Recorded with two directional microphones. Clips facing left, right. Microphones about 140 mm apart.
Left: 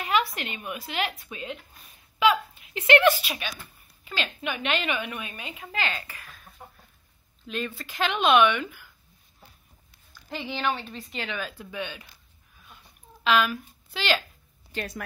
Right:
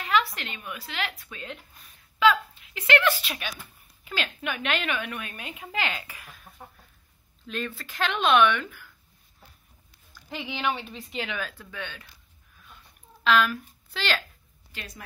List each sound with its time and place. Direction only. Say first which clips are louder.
0.0 s a woman's voice: even; 20° left (ahead or behind)
3.3 s a woman's voice: left 1 dB; 5° right (ahead or behind)
7.4 s a woman's voice: left 1 dB; 5° left (ahead or behind)
10.3 s a woman's voice: left 1 dB; 5° right (ahead or behind)
11.4 s a woman's voice: left 3 dB; 15° left (ahead or behind)
13.2 s a woman's voice: even; 5° left (ahead or behind)